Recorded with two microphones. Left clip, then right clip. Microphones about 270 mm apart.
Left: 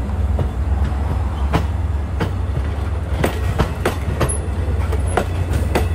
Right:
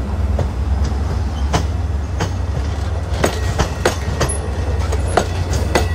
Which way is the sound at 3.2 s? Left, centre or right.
Right.